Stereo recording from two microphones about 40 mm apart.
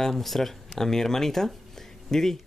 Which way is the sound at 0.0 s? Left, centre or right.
Centre.